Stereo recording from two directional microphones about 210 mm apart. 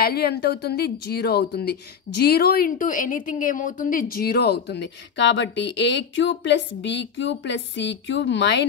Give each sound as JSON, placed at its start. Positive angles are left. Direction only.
{"t": 0.0, "sound": "a woman's voice", "side_deg": 50}